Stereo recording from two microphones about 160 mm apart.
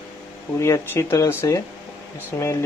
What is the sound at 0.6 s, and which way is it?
Speech, 20° left (ahead or behind).